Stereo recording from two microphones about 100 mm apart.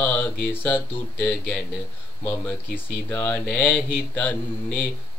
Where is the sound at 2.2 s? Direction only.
20° left (ahead or behind).